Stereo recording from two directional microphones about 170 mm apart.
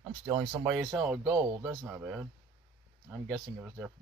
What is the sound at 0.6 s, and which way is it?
Speech, centre (ahead or behind).